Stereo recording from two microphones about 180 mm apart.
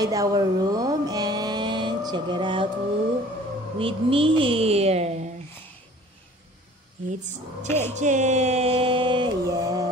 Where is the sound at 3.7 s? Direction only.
30° right (ahead or behind).